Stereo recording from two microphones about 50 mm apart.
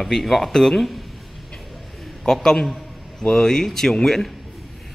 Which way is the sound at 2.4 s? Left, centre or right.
Centre.